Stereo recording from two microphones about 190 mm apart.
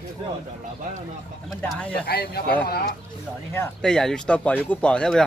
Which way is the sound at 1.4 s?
Centre (ahead or behind).